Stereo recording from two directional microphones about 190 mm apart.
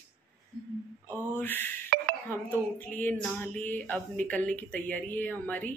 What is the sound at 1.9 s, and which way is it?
Telephone dialing, 50° right (ahead or behind).